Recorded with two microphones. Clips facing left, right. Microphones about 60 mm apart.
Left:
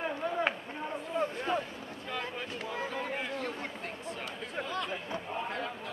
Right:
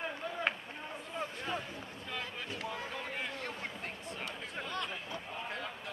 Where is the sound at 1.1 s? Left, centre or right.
Centre.